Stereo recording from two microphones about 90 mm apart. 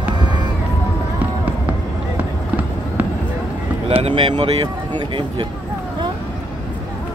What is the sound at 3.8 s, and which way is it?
Speech, 90° right.